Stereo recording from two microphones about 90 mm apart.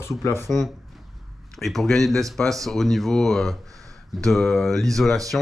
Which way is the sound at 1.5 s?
Centre (ahead or behind).